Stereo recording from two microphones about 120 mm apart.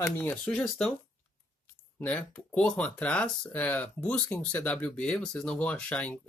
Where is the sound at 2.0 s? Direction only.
10° left (ahead or behind).